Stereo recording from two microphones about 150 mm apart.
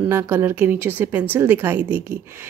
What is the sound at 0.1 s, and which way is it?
Speech, 15° right (ahead or behind).